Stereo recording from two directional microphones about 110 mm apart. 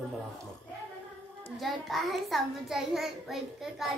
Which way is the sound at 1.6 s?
Centre (ahead or behind).